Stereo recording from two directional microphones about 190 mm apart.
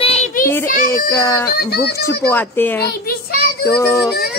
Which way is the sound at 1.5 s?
55° left (ahead or behind).